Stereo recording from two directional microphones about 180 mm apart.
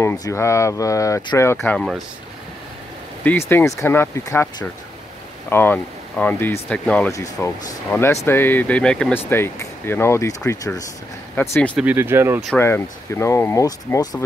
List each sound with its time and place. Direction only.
0.0 s speech: 15° left (ahead or behind)
1.6 s speech: 5° left (ahead or behind)
3.3 s speech: 10° left (ahead or behind)
11.7 s speech: 10° right (ahead or behind)
12.5 s speech: 15° left (ahead or behind)